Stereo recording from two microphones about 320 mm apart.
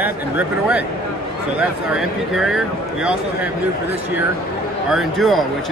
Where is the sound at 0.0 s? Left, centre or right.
Centre.